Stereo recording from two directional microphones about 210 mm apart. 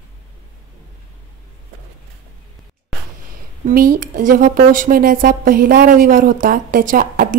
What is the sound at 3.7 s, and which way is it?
A woman's voice, 45° right (ahead or behind).